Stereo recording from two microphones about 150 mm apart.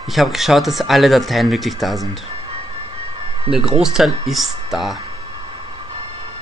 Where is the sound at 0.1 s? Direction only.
Centre (ahead or behind).